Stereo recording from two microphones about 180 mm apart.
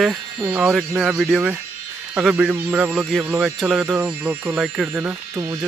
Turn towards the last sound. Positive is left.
turn(degrees=-15)  # may be behind; listen again after turning